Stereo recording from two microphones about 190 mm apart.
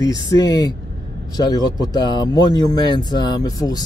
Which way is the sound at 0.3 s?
20° left (ahead or behind).